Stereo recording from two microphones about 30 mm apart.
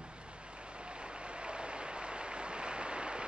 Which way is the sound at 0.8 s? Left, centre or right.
Right.